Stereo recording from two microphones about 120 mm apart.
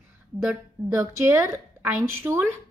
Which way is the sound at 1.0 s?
25° right (ahead or behind).